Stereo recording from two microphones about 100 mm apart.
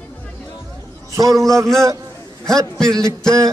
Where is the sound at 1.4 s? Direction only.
5° left (ahead or behind).